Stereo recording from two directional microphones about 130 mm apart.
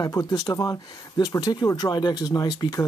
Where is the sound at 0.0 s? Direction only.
30° left (ahead or behind).